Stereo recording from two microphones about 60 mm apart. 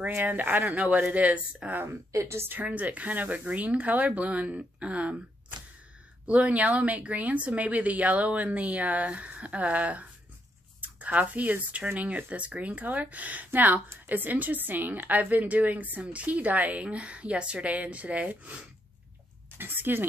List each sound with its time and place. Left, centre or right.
0.1 s a woman's voice: right
1.9 s a woman's voice: right
6.2 s a woman's voice: right
10.8 s a sound: right
11.9 s a woman's voice: right
19.6 s speech: right